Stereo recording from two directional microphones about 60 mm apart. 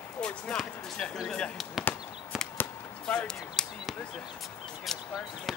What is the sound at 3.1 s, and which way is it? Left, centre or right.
Speech, centre.